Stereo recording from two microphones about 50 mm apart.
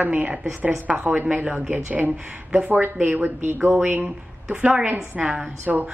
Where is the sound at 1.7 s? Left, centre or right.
Right.